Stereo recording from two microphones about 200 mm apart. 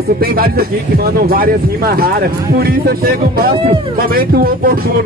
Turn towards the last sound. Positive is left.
turn(degrees=-45)  # may be behind; listen again after turning